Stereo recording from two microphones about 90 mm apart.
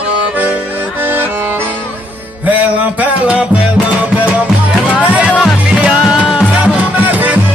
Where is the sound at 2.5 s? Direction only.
15° right (ahead or behind).